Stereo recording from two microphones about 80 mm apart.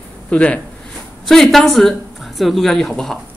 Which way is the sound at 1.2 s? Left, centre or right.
Centre.